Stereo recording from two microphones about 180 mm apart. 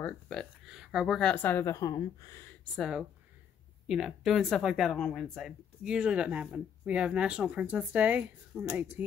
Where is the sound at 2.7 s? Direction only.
Centre (ahead or behind).